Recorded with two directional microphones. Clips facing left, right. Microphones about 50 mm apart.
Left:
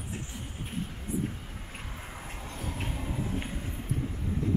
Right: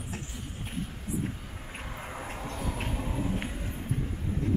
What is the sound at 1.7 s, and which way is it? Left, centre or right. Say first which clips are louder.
Vehicle: right 5 dB; centre.